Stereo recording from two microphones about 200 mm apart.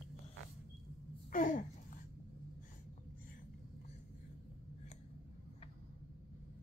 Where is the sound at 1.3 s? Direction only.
40° left (ahead or behind).